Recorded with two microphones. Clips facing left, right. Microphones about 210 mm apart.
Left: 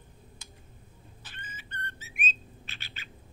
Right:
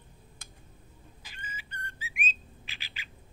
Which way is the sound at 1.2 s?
10° right (ahead or behind).